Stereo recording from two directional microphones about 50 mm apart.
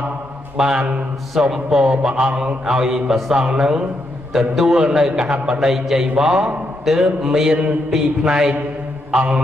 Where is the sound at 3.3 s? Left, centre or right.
Centre.